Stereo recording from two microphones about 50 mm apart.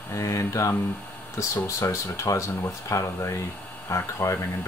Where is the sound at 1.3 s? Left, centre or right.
Left.